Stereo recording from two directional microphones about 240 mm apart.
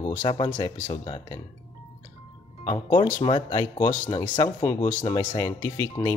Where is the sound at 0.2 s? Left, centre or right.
Centre.